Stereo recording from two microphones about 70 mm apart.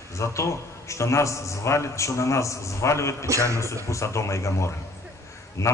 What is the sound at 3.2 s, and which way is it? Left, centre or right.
Speech, right.